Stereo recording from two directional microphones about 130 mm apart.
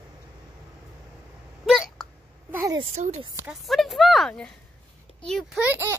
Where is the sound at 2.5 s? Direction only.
20° right (ahead or behind).